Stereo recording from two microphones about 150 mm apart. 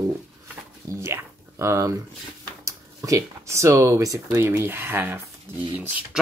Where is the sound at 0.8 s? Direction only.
20° right (ahead or behind).